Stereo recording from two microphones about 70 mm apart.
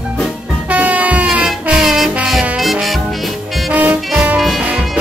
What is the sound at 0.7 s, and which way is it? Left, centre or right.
Music, right.